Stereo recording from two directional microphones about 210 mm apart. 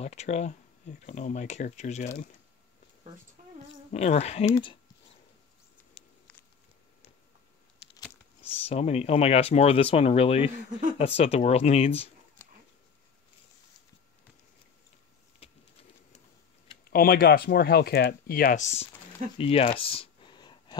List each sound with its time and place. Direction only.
0.0 s speech: 30° left (ahead or behind)
3.9 s speech: 30° left (ahead or behind)
8.6 s speech: 30° left (ahead or behind)
10.7 s speech: 40° right (ahead or behind)
11.0 s speech: 30° left (ahead or behind)
15.4 s a sound: 30° left (ahead or behind)
16.9 s speech: 45° left (ahead or behind)
19.3 s a sound: 25° left (ahead or behind)